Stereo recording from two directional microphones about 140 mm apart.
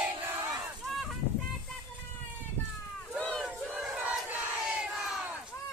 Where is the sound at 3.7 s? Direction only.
10° right (ahead or behind).